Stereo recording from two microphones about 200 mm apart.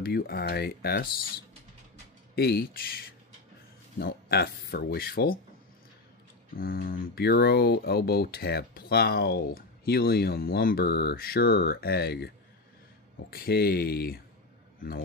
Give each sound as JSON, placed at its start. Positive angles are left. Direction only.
{"t": 0.0, "sound": "speech", "side_deg": 50}
{"t": 2.3, "sound": "speech", "side_deg": 50}
{"t": 6.5, "sound": "speech", "side_deg": 45}
{"t": 13.3, "sound": "speech", "side_deg": 50}